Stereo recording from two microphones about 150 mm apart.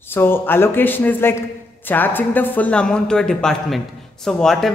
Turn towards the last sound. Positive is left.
turn(degrees=0)  # may be behind; listen again after turning